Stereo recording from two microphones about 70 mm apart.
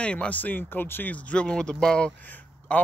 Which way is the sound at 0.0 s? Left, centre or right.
Centre.